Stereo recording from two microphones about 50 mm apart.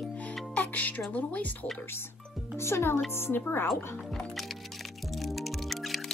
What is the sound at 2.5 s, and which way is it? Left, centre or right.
Speech, left.